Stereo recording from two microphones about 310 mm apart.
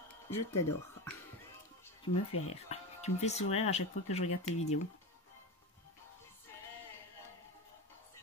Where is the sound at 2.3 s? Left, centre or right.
Centre.